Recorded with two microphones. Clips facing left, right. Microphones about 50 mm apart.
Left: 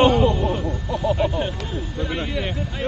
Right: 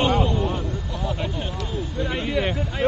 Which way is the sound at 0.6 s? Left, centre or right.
Left.